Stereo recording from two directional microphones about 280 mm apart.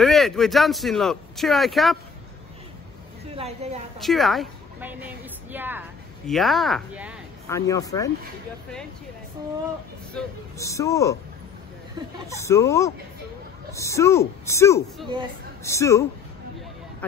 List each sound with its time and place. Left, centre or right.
0.0 s speech: centre
3.3 s a woman's voice: right
4.0 s a woman's voice: centre
7.4 s a woman's voice: centre
10.1 s a woman's voice: centre
12.3 s a woman's voice: centre